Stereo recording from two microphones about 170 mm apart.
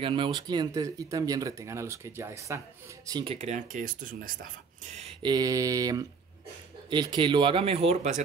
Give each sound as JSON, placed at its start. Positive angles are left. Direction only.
{"t": 0.0, "sound": "speech", "side_deg": -30}
{"t": 3.3, "sound": "speech", "side_deg": -45}
{"t": 5.2, "sound": "speech", "side_deg": -20}